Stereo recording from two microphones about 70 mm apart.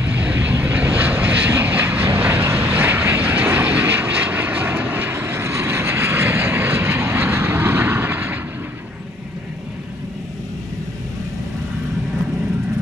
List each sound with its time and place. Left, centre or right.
0.0 s vehicle: right